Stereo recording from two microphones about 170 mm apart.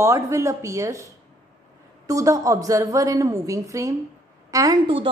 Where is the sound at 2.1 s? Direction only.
20° right (ahead or behind).